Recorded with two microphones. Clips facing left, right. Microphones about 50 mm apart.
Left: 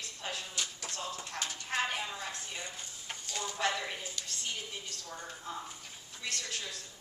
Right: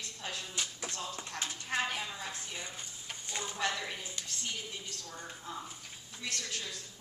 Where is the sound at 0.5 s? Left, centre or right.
Centre.